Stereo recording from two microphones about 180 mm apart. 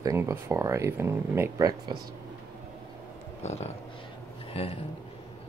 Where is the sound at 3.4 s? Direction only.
35° left (ahead or behind).